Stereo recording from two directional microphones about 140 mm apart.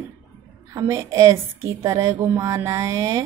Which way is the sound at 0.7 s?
20° right (ahead or behind).